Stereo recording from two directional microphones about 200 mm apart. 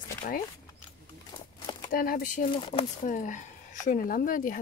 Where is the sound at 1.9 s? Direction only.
45° left (ahead or behind).